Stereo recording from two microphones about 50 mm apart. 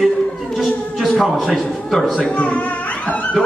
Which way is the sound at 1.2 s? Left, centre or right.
Centre.